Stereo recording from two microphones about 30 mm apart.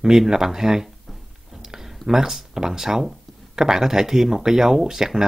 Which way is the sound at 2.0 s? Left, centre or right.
Centre.